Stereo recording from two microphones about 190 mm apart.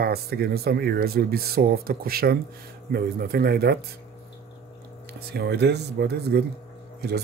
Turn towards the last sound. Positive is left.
turn(degrees=-60)  # may be behind; listen again after turning